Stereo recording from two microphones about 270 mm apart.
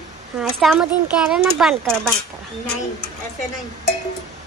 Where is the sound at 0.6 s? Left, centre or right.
Centre.